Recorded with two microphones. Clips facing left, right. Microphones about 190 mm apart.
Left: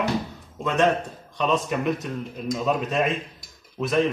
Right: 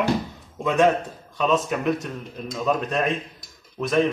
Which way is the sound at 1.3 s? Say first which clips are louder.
Right 1 dB; centre (ahead or behind).